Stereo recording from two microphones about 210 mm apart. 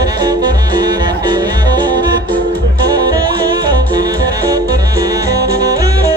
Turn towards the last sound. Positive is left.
turn(degrees=-15)  # may be behind; listen again after turning